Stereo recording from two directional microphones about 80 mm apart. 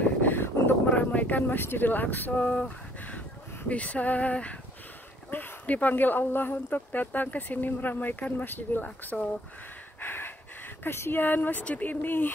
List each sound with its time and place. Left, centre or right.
0.2 s speech: left